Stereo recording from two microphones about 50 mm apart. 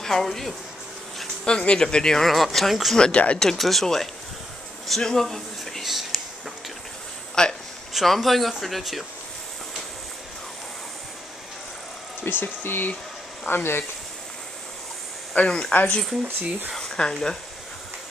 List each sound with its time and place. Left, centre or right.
0.0 s speech: centre
1.4 s speech: centre
2.2 s speech: centre
3.0 s speech: left
3.5 s speech: centre
4.8 s a sound: centre
7.4 s speech: centre
7.9 s speech: centre
12.3 s speech: left
15.4 s speech: centre
15.7 s speech: left
16.9 s speech: centre